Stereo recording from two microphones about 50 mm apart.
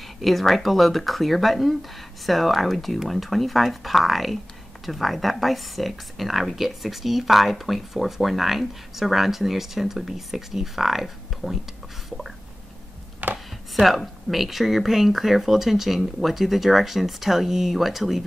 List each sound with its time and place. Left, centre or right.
0.0 s speech: centre
13.2 s speech: right
13.7 s speech: centre